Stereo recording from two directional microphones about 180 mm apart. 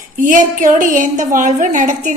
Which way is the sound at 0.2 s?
45° right (ahead or behind).